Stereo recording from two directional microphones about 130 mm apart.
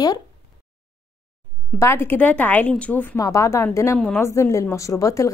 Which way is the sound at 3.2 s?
25° left (ahead or behind).